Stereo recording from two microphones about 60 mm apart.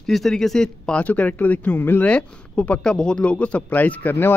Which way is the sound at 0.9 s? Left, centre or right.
Left.